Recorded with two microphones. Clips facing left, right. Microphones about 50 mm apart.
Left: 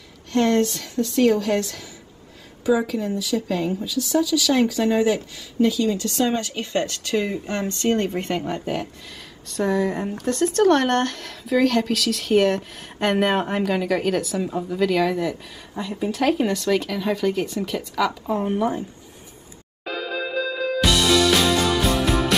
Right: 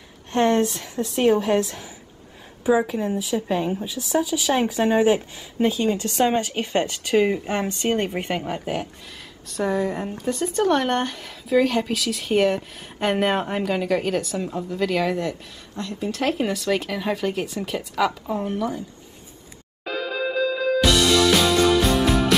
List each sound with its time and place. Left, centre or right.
0.3 s a woman's voice: right; by 15.3 s centre
15.7 s speech: centre
16.2 s speech: centre
18.4 s speech: left
19.8 s music: centre